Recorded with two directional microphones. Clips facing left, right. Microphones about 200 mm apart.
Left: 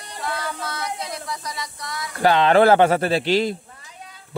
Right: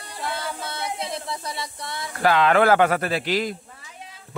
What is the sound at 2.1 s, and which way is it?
A man's voice, 30° left (ahead or behind).